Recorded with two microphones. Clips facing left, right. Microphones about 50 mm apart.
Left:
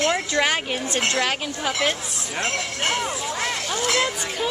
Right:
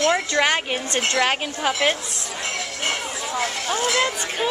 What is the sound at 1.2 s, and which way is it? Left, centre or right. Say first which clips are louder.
Speech: right 3 dB; centre.